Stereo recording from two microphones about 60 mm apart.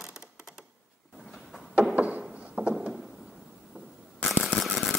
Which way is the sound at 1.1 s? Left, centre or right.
Centre.